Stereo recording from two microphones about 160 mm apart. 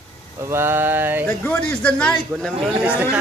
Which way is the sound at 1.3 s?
10° left (ahead or behind).